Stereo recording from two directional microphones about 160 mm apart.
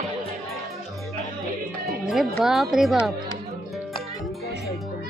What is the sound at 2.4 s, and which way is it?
Speech, centre (ahead or behind).